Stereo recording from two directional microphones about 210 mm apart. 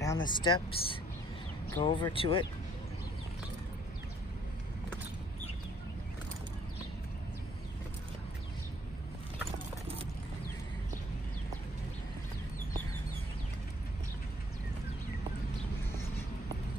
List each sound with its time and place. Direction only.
0.0 s speech: 20° left (ahead or behind)